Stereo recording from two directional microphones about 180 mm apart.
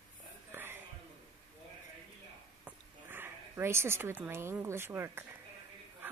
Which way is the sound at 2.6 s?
10° right (ahead or behind).